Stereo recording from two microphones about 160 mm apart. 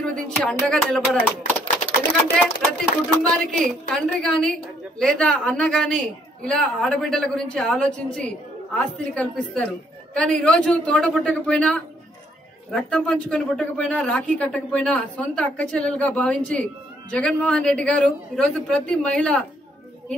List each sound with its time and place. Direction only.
0.0 s a woman's voice: 5° left (ahead or behind)
2.3 s a woman's voice: 5° left (ahead or behind)